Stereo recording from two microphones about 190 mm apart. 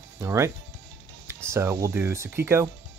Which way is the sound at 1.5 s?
15° right (ahead or behind).